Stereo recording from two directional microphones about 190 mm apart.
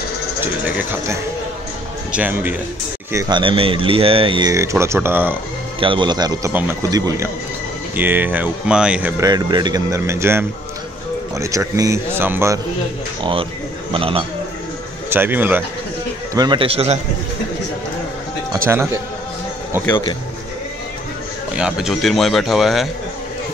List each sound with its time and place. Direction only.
0.4 s speech: 10° right (ahead or behind)
3.1 s speech: 20° right (ahead or behind)
5.8 s speech: 25° right (ahead or behind); by 9.1 s 5° right (ahead or behind)
9.2 s speech: 20° right (ahead or behind)
13.2 s speech: 30° right (ahead or behind)
15.0 s speech: 10° right (ahead or behind)
16.3 s speech: 25° right (ahead or behind)
21.5 s speech: 5° right (ahead or behind)